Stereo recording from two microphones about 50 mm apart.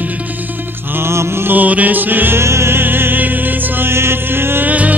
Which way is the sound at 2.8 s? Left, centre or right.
Right.